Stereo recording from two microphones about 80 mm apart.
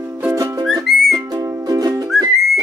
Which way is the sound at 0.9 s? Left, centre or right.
Centre.